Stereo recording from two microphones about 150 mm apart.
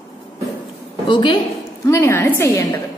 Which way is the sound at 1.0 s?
30° left (ahead or behind).